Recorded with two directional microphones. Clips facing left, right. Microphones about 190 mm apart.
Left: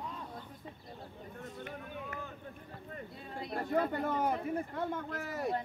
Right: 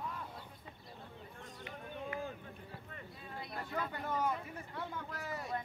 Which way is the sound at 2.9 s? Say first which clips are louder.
Left 6 dB; 35° left (ahead or behind).